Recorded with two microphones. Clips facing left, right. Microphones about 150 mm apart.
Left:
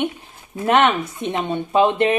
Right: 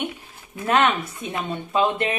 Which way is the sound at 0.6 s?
15° left (ahead or behind).